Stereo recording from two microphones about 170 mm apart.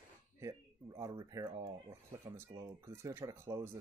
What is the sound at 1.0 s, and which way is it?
Speech, 20° right (ahead or behind).